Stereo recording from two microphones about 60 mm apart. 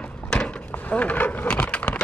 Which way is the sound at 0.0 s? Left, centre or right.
Centre.